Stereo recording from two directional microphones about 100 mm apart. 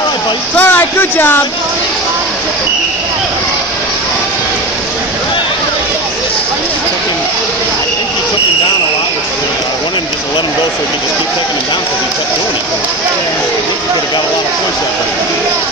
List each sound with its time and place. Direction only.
0.6 s speech: 20° left (ahead or behind)